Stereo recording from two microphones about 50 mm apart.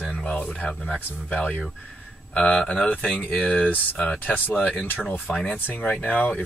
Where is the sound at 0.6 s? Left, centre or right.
Left.